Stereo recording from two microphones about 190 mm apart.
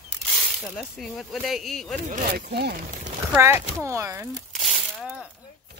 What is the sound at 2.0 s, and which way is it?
Speech, 40° right (ahead or behind).